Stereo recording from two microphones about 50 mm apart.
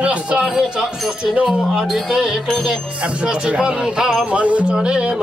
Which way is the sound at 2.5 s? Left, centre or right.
Centre.